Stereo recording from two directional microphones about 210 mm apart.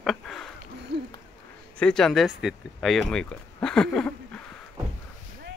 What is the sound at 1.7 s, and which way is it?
Speech, 5° left (ahead or behind).